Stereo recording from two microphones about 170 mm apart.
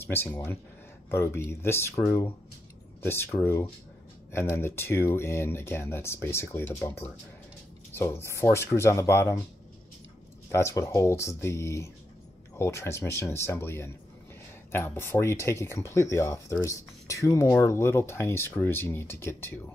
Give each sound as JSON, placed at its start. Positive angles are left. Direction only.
{"t": 0.0, "sound": "speech", "side_deg": 15}
{"t": 10.5, "sound": "speech", "side_deg": 15}